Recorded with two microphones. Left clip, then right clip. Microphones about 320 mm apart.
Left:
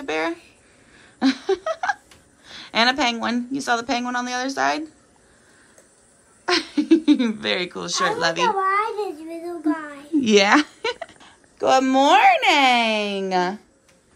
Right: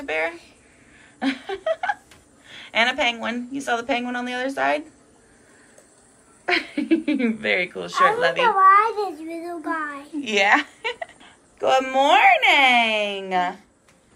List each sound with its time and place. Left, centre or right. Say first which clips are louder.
0.0 s a sound: even; centre
1.2 s speech: left 4 dB; centre
6.4 s speech: left 1 dB; centre
8.5 s a child's voice: right 6 dB; centre
10.4 s speech: left 1 dB; left
11.1 s a sound: left 2 dB; centre
12.3 s speech: even; centre